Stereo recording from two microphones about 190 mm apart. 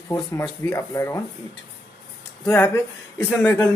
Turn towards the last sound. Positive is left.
turn(degrees=10)  # may be behind; listen again after turning